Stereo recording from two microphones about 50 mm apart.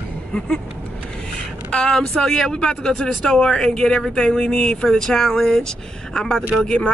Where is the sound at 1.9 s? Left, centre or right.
Centre.